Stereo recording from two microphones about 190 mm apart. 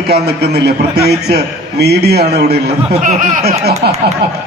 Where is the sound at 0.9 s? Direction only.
60° right (ahead or behind).